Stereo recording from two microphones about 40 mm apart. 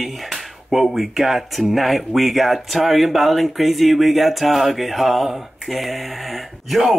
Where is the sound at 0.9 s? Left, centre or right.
Centre.